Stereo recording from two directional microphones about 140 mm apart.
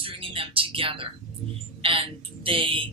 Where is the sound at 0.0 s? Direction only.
40° right (ahead or behind).